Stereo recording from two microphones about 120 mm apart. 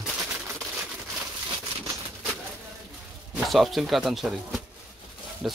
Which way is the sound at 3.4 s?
Centre (ahead or behind).